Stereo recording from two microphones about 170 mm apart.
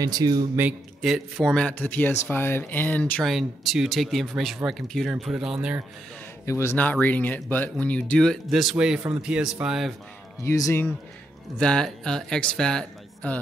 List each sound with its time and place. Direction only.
0.0 s speech: 20° right (ahead or behind)
0.6 s speech: 5° right (ahead or behind)
6.4 s speech: 15° left (ahead or behind); by 9.9 s centre (ahead or behind)
10.4 s speech: 20° left (ahead or behind)